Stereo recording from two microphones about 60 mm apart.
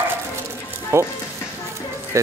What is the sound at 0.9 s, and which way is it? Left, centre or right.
Speech, right.